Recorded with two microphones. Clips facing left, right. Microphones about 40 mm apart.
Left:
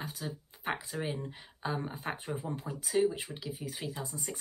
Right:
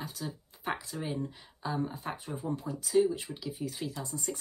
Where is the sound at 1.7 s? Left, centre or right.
Left.